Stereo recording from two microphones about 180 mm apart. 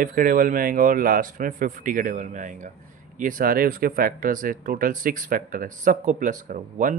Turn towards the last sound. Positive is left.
turn(degrees=-45)  # may be behind; listen again after turning